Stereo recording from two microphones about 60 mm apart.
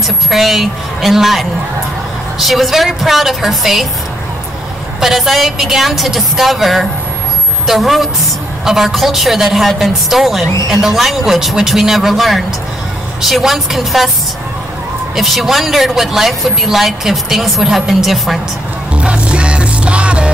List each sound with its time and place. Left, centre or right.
0.0 s a woman's voice: centre
5.0 s speech: centre
15.1 s speech: centre
18.9 s music: centre